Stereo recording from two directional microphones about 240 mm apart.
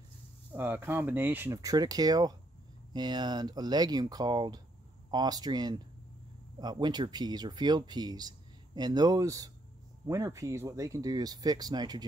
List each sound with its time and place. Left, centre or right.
0.6 s speech: centre